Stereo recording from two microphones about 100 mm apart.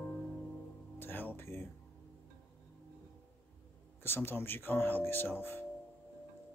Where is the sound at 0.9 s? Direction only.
20° left (ahead or behind).